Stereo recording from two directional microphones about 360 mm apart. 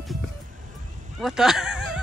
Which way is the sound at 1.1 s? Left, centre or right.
Centre.